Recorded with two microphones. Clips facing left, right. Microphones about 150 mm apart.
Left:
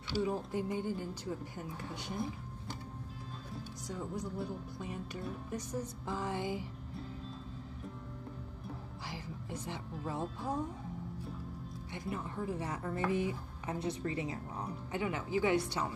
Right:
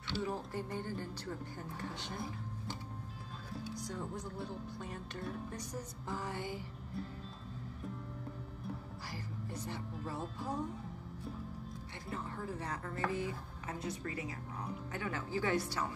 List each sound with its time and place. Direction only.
0.1 s speech: 15° left (ahead or behind)
3.8 s speech: centre (ahead or behind)
6.1 s speech: 15° left (ahead or behind)
9.1 s speech: 15° left (ahead or behind)
11.9 s speech: 20° left (ahead or behind)
14.9 s speech: 15° left (ahead or behind)